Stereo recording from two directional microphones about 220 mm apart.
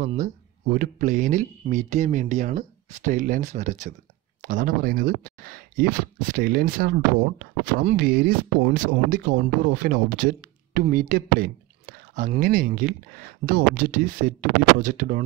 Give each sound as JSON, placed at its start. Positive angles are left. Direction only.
{"t": 0.0, "sound": "speech", "side_deg": -30}